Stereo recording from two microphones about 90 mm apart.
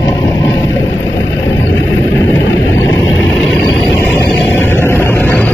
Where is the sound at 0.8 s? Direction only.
25° left (ahead or behind).